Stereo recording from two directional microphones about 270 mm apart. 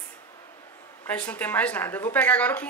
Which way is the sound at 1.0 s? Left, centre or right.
Centre.